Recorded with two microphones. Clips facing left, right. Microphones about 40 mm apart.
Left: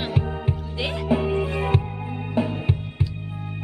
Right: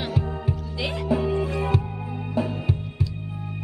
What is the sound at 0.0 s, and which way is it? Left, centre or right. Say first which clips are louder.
Music: left 1 dB; left.